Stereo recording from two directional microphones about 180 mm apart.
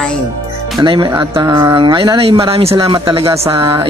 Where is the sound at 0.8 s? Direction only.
25° right (ahead or behind).